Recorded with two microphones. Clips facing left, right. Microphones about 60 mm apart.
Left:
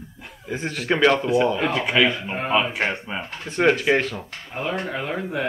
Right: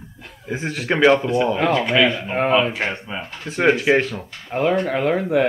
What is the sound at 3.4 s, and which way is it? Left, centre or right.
Speech, centre.